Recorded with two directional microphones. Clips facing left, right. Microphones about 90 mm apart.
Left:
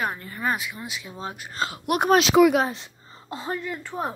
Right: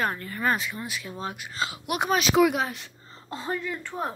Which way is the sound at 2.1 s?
80° left.